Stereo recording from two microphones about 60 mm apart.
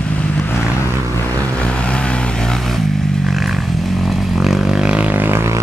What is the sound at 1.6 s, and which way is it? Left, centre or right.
Vehicle, centre.